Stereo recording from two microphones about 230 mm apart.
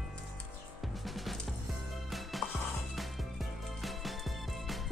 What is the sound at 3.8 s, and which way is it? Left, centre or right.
Music, centre.